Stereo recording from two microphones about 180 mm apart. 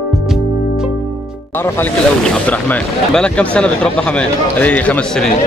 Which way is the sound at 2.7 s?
5° left (ahead or behind).